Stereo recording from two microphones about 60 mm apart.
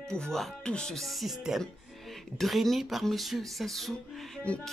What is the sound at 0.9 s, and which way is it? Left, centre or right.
Speech, centre.